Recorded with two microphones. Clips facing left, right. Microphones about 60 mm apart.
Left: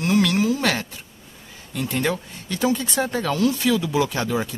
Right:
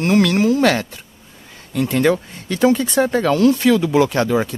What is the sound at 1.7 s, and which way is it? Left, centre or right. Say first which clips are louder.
Speech: right 8 dB; right.